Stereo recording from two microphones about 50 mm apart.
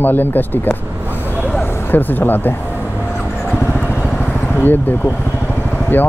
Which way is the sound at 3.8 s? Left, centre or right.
Left.